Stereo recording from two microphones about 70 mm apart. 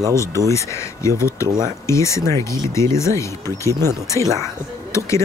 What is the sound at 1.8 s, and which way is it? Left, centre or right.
Speech, left.